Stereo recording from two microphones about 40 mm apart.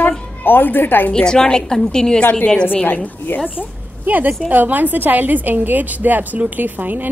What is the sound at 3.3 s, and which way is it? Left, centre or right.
Speech, left.